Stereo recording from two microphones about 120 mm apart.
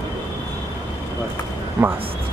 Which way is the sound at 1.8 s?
15° right (ahead or behind).